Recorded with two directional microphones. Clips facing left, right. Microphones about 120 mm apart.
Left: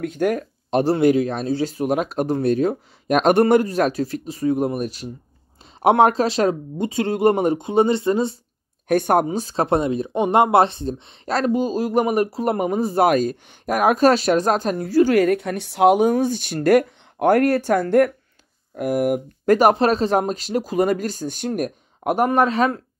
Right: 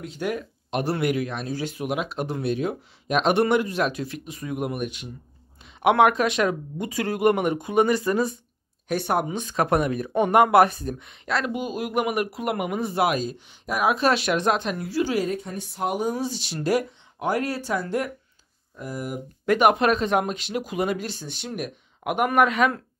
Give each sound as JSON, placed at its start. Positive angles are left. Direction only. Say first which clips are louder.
{"t": 0.0, "sound": "speech", "louder": "left 7 dB", "side_deg": 50}
{"t": 8.8, "sound": "speech", "louder": "left 7 dB", "side_deg": 50}
{"t": 19.4, "sound": "speech", "louder": "left 3 dB", "side_deg": 40}